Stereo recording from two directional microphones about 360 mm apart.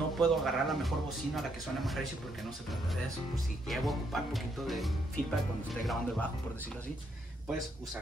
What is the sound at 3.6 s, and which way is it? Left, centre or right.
Speech, centre.